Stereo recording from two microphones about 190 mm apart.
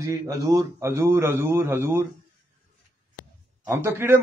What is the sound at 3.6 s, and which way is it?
Speech, 10° right (ahead or behind).